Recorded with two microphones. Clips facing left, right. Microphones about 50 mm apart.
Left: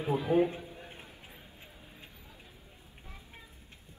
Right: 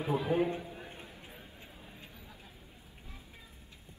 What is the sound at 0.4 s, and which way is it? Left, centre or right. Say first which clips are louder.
Speech: left 3 dB; right.